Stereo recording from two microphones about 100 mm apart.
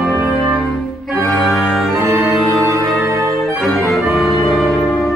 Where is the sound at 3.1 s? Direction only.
30° right (ahead or behind).